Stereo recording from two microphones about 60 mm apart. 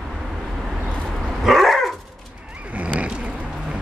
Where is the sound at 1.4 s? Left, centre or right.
Centre.